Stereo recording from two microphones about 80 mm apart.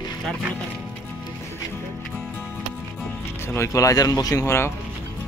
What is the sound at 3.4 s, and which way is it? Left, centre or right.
Speech, left.